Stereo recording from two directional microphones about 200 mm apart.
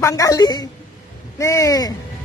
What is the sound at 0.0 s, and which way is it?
Speech, 15° left (ahead or behind).